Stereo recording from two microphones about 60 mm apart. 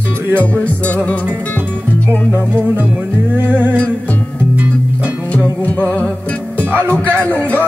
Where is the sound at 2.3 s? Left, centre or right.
Right.